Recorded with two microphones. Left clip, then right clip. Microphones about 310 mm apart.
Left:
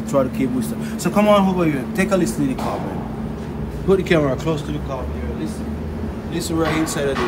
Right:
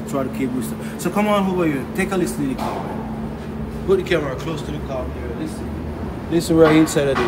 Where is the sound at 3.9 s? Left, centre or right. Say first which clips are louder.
Left 2 dB; centre.